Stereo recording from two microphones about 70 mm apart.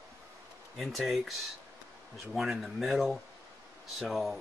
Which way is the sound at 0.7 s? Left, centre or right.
Centre.